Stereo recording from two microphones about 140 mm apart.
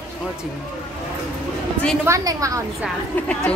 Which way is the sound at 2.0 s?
25° right (ahead or behind).